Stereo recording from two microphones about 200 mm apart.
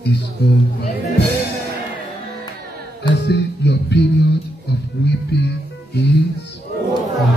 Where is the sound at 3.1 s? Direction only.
60° left (ahead or behind).